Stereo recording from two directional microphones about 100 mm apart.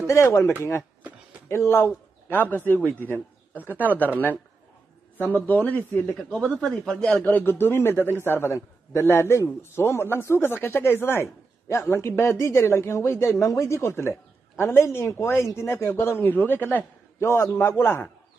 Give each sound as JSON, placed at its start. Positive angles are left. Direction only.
{"t": 0.0, "sound": "speech", "side_deg": 30}
{"t": 1.5, "sound": "a man's voice", "side_deg": 25}
{"t": 5.1, "sound": "a man's voice", "side_deg": 20}
{"t": 6.1, "sound": "a man's voice", "side_deg": 5}
{"t": 7.2, "sound": "a man's voice", "side_deg": 20}